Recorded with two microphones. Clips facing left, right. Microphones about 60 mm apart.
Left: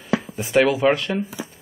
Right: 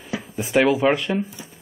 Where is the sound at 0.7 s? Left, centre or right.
Centre.